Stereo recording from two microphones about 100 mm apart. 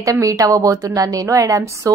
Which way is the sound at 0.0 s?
35° right (ahead or behind).